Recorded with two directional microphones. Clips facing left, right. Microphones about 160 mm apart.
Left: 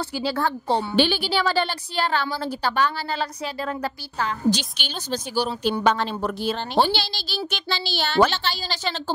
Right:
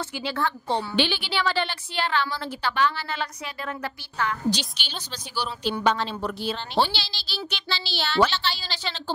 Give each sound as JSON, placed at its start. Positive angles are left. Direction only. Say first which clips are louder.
{"t": 0.2, "sound": "a woman's voice", "louder": "left 4 dB", "side_deg": 35}
{"t": 4.5, "sound": "a woman's voice", "louder": "left 4 dB", "side_deg": 50}